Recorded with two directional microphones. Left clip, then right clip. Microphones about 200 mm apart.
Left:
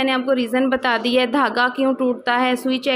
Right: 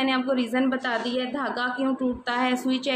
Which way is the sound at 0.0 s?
25° left (ahead or behind).